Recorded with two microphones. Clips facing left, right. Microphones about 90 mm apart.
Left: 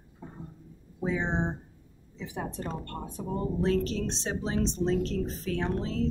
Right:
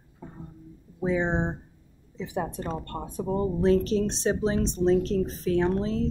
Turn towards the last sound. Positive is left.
turn(degrees=-20)  # may be behind; listen again after turning